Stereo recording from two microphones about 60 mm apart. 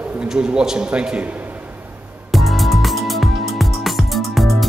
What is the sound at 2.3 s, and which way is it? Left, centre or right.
Music, centre.